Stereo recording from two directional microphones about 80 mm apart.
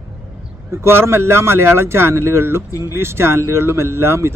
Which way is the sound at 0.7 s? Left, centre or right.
Right.